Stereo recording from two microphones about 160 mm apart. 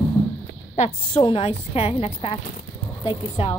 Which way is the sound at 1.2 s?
35° left (ahead or behind).